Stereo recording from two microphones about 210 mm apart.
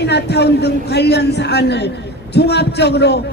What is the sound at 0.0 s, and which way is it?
Speech, 55° left (ahead or behind).